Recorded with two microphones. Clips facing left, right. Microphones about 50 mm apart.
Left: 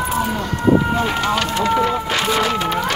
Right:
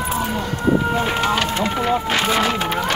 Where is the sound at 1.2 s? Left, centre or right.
Right.